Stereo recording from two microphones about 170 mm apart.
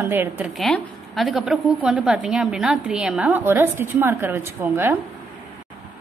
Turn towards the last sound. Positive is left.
turn(degrees=-10)  # may be behind; listen again after turning